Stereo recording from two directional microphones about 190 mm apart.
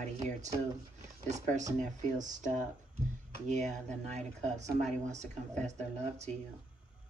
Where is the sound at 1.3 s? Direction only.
40° right (ahead or behind).